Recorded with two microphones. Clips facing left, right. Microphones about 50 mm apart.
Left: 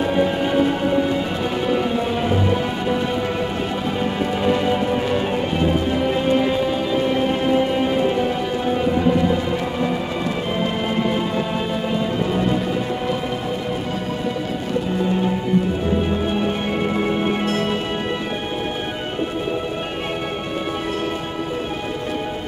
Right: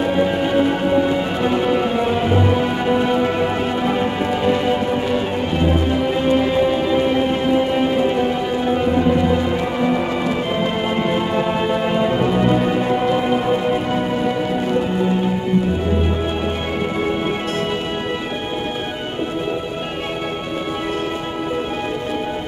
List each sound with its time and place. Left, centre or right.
0.0 s music: centre
4.5 s music: centre
6.7 s music: centre
11.1 s music: right